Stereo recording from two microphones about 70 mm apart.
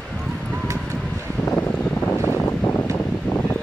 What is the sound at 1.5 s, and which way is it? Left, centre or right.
Vehicle, left.